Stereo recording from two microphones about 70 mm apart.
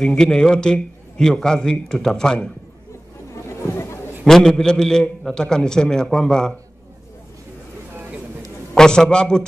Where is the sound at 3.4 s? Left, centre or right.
Left.